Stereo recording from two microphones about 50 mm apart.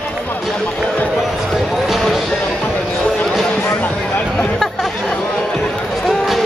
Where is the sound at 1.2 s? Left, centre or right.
Centre.